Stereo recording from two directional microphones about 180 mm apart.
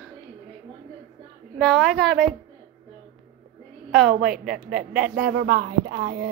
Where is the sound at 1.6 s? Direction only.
Centre (ahead or behind).